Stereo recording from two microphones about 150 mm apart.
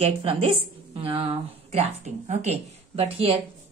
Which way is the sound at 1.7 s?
45° right (ahead or behind).